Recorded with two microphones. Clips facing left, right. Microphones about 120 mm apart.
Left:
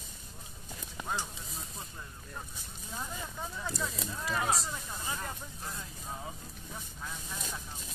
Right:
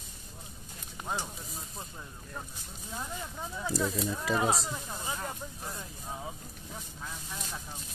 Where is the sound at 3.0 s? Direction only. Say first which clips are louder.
Right 1 dB; 10° right (ahead or behind).